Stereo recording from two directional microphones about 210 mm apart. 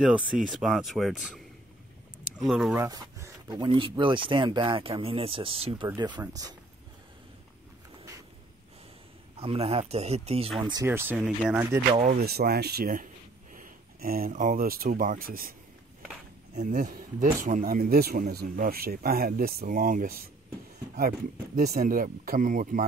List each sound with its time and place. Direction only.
0.0 s speech: centre (ahead or behind)
2.4 s speech: centre (ahead or behind)
2.8 s speech: 15° right (ahead or behind)
9.4 s speech: 30° right (ahead or behind)
10.6 s speech: 15° right (ahead or behind)
12.0 s speech: 40° right (ahead or behind)
16.5 s speech: 40° right (ahead or behind)
21.5 s speech: 45° right (ahead or behind)